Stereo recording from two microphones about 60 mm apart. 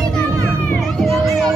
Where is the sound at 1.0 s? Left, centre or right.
Centre.